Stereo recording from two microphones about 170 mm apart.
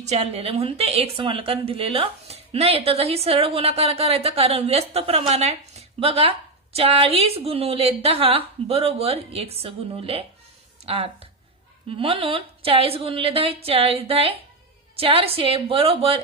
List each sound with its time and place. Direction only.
0.0 s a woman's voice: 40° right (ahead or behind)